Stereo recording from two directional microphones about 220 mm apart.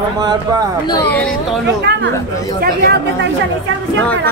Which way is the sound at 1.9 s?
50° right (ahead or behind).